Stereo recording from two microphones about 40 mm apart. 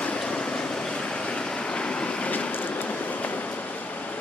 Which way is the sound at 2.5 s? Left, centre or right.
Left.